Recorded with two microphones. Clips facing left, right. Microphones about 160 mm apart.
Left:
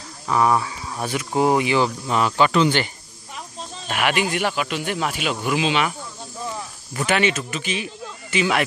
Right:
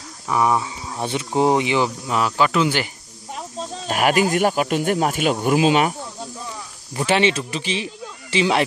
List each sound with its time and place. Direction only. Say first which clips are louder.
0.3 s speech: even; 15° right (ahead or behind)
2.0 s speech: left 1 dB; 5° right (ahead or behind)
3.3 s speech: right 5 dB; 40° right (ahead or behind)
6.9 s speech: right 2 dB; 30° right (ahead or behind)